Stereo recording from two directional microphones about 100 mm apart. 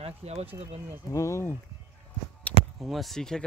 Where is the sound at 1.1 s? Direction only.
30° left (ahead or behind).